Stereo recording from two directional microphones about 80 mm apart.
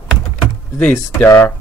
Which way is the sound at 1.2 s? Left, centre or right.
Left.